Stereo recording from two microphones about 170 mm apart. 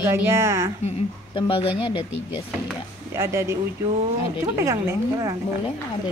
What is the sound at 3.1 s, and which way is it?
A woman's voice, 15° right (ahead or behind).